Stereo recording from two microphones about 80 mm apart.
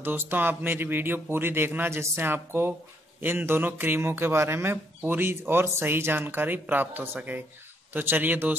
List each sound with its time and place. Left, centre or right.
0.0 s a man's voice: right